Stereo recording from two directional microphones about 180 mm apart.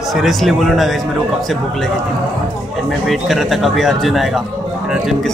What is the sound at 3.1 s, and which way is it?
Speech, centre (ahead or behind).